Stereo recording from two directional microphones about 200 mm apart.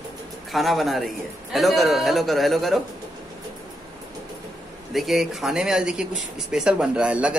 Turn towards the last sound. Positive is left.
turn(degrees=-5)  # may be behind; listen again after turning